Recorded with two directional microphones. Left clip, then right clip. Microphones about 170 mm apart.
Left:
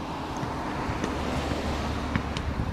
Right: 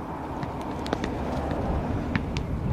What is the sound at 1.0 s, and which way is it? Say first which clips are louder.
Vehicle: even; 5° right (ahead or behind).